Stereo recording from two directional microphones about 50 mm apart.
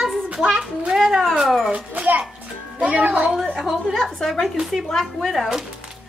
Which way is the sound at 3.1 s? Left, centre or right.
Centre.